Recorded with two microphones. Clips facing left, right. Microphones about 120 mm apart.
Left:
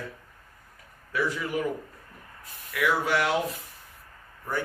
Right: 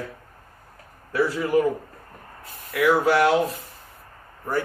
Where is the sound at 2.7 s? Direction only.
35° right (ahead or behind).